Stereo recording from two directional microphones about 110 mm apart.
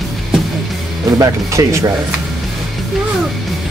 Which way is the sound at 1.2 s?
30° right (ahead or behind).